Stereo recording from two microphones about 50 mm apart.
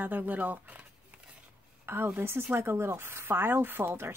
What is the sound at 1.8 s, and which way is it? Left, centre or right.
A woman's voice, right.